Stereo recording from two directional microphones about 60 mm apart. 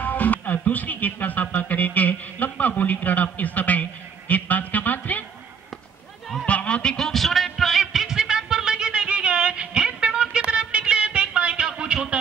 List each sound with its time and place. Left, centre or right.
0.0 s speech: left
4.3 s a sound: left
6.4 s honk: left; by 12.2 s centre